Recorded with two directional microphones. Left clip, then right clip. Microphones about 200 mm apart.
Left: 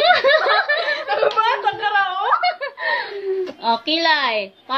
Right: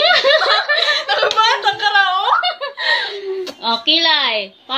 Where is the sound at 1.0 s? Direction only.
15° left (ahead or behind).